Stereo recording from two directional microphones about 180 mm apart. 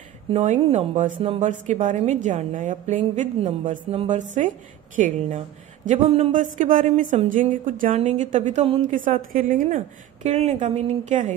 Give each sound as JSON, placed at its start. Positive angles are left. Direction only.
{"t": 0.3, "sound": "a woman's voice", "side_deg": -40}
{"t": 8.8, "sound": "a woman's voice", "side_deg": -50}